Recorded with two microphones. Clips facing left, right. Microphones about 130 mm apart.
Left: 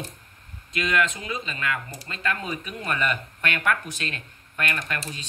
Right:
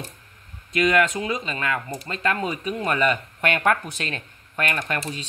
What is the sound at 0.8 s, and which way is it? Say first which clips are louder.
Speech: right 5 dB; 40° right (ahead or behind).